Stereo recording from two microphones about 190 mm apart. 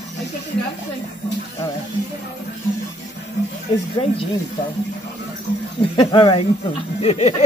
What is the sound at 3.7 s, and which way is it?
Speech, 30° left (ahead or behind).